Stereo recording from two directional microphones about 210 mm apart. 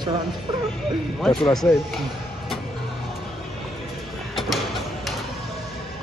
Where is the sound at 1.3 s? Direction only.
25° left (ahead or behind).